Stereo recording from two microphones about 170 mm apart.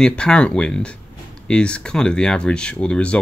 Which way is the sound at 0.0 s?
5° left (ahead or behind).